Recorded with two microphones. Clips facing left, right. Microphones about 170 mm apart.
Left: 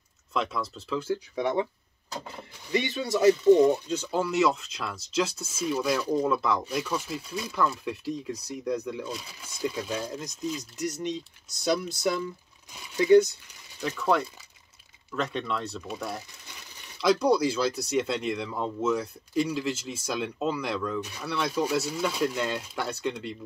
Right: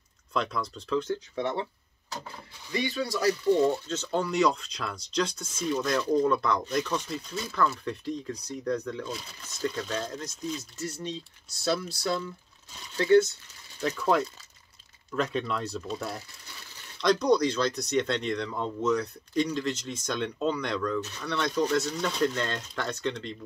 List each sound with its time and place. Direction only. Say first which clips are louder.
0.3 s speech: even; 5° left (ahead or behind)
2.7 s speech: left 3 dB; 25° left (ahead or behind); by 10.6 s 5° left (ahead or behind)
10.6 s speech: left 4 dB; 15° left (ahead or behind)
13.8 s speech: even; centre (ahead or behind)
17.0 s speech: left 1 dB; 5° left (ahead or behind)